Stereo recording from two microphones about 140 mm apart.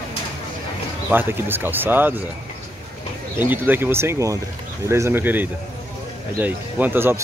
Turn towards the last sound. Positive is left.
turn(degrees=-15)  # may be behind; listen again after turning